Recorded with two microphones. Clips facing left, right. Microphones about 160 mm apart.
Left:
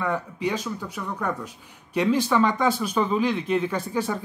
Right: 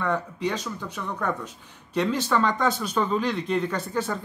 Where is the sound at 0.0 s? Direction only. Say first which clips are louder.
Even; 10° left (ahead or behind).